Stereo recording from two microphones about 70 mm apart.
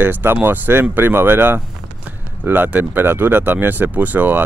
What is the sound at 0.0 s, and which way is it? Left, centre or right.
Speech, right.